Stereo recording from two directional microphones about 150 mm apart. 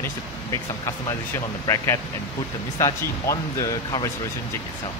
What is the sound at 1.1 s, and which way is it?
Speech, 20° left (ahead or behind).